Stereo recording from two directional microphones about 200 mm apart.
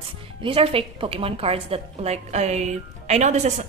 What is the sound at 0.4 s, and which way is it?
A woman's voice, 25° right (ahead or behind).